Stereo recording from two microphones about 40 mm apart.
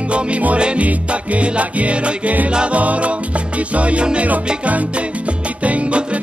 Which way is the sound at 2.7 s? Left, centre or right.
Right.